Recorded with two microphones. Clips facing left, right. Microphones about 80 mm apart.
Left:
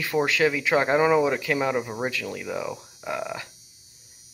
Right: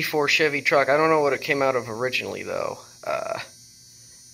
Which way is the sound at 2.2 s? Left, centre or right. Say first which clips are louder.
Right 2 dB; centre.